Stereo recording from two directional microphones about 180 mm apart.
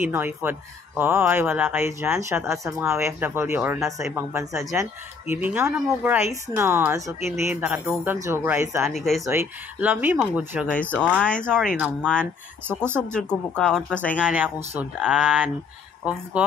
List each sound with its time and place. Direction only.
0.0 s speech: 10° right (ahead or behind)
8.8 s speech: centre (ahead or behind)
9.2 s speech: 15° right (ahead or behind)
10.7 s speech: 10° left (ahead or behind)
12.6 s speech: 15° right (ahead or behind)
13.6 s speech: 5° left (ahead or behind)
14.2 s speech: 10° right (ahead or behind)